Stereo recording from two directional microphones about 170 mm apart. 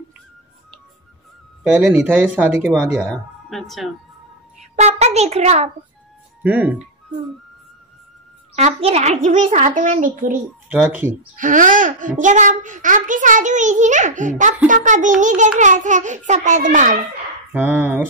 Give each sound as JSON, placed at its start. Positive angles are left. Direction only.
{"t": 1.8, "sound": "speech", "side_deg": -10}
{"t": 4.7, "sound": "a child's voice", "side_deg": -40}
{"t": 6.4, "sound": "speech", "side_deg": -10}
{"t": 8.5, "sound": "a child's voice", "side_deg": -40}
{"t": 11.3, "sound": "a child's voice", "side_deg": -50}
{"t": 17.5, "sound": "speech", "side_deg": -10}